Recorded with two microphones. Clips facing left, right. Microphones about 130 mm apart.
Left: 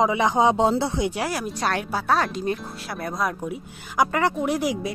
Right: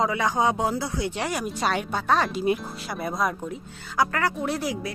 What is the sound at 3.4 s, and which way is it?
Speech, 15° left (ahead or behind).